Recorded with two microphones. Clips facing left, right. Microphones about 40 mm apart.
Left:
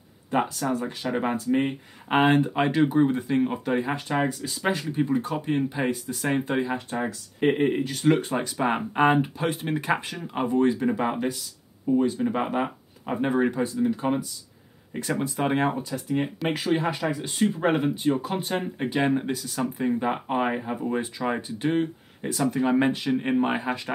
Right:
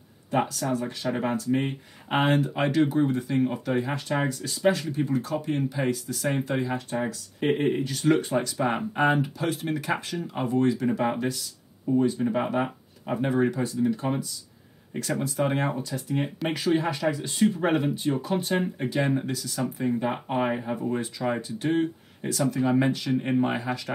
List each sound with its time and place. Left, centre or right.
0.3 s speech: left
2.0 s speech: left
4.4 s speech: centre
6.7 s speech: centre
22.5 s speech: left